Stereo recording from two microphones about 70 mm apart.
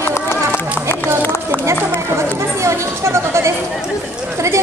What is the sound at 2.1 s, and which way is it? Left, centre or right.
Chatter, right.